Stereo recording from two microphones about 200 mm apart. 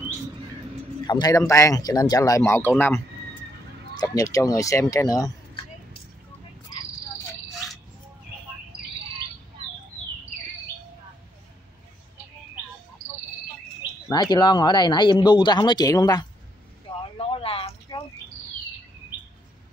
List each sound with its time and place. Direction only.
1.0 s speech: 20° left (ahead or behind)
14.0 s speech: 20° left (ahead or behind)
16.9 s vehicle: 25° left (ahead or behind)
17.2 s a sound: 30° left (ahead or behind)